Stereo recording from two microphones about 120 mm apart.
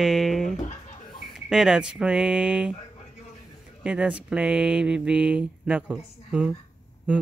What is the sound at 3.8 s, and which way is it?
Speech, 10° right (ahead or behind).